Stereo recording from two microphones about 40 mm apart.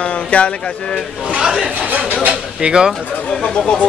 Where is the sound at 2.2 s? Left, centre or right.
Right.